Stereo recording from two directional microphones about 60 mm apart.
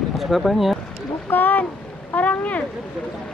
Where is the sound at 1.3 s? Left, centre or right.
Left.